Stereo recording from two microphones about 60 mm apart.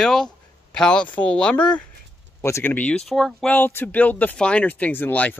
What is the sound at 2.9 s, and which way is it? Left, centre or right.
Speech, centre.